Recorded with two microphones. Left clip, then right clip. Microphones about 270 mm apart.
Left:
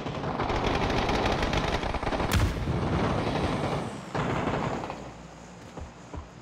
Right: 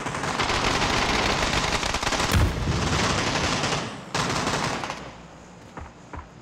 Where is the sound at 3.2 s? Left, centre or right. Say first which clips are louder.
Right 4 dB; right.